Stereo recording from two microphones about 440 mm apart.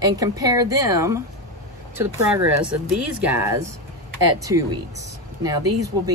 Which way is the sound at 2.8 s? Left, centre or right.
Centre.